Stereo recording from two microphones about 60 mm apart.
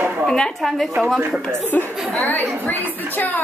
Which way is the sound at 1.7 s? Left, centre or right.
Left.